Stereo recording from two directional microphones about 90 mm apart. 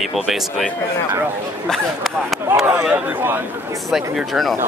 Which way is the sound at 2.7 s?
20° right (ahead or behind).